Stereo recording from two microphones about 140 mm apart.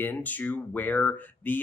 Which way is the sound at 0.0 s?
10° left (ahead or behind).